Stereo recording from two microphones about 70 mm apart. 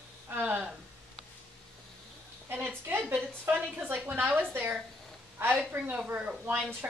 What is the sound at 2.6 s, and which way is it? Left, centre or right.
A woman's voice, right.